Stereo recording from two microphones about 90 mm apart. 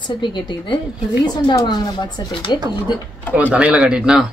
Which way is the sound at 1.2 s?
50° left (ahead or behind).